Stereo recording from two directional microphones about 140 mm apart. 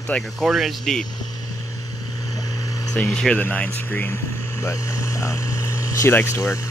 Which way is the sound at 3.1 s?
10° left (ahead or behind).